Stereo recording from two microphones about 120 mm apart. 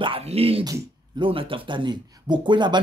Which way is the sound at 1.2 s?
45° right (ahead or behind).